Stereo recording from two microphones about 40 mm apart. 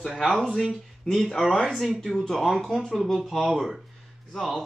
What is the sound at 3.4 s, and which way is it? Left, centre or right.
Speech, centre.